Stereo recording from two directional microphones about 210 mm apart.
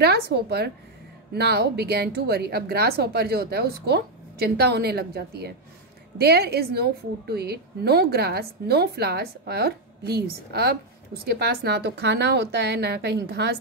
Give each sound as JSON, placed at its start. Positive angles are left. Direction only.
{"t": 0.0, "sound": "a woman's voice", "side_deg": -50}